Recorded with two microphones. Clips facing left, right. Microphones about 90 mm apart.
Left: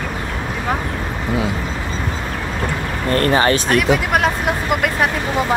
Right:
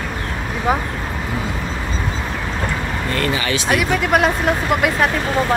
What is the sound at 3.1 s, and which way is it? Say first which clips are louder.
Speech: left 7 dB; 40° left (ahead or behind).